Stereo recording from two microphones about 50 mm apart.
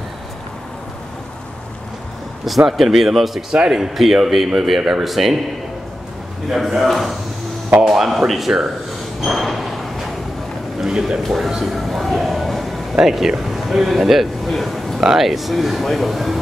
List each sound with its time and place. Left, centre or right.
2.4 s speech: centre
3.5 s speech: centre
6.5 s speech: centre
9.2 s a sound: centre
10.8 s speech: centre
11.2 s a sound: centre
12.9 s a man's voice: centre